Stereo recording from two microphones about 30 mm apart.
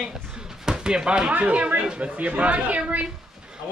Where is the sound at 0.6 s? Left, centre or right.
Right.